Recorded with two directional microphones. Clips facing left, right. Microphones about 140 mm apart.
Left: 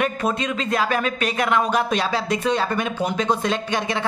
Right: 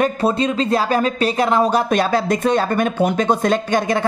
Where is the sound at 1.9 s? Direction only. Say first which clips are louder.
Right 5 dB; 50° right (ahead or behind).